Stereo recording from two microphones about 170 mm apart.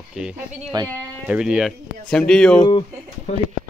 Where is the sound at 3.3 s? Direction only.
40° left (ahead or behind).